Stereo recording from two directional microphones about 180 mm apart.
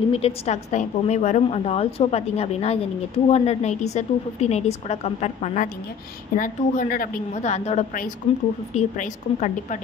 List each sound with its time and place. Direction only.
0.1 s a woman's voice: 35° left (ahead or behind)